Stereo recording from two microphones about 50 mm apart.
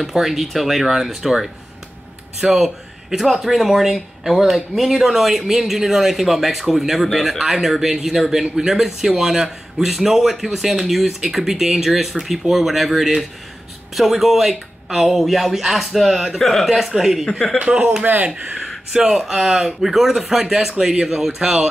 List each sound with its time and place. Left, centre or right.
0.0 s speech: centre
16.3 s speech: centre
17.6 s speech: centre
18.0 s speech: right
18.9 s speech: centre